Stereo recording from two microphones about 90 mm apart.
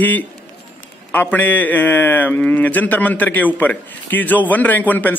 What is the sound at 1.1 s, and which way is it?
A man's voice, 20° left (ahead or behind).